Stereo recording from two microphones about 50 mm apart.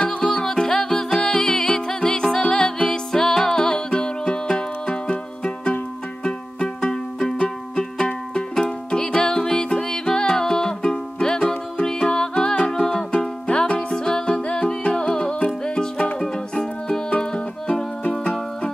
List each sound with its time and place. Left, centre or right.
0.0 s music: centre
5.1 s music: left
6.2 s music: centre